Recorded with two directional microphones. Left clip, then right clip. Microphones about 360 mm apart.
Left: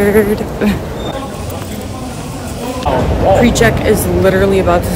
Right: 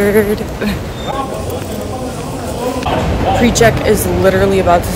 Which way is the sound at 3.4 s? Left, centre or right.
Centre.